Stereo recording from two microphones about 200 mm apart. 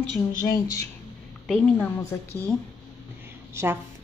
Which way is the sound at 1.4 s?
5° left (ahead or behind).